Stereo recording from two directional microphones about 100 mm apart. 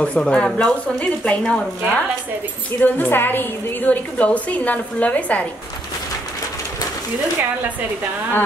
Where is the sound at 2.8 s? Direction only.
20° left (ahead or behind).